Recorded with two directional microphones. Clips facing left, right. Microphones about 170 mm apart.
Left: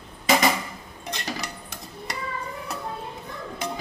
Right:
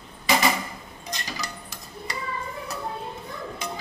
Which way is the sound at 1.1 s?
60° left (ahead or behind).